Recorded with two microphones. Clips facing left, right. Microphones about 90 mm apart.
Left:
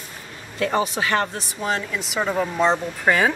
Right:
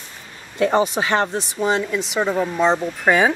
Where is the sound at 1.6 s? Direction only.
Centre (ahead or behind).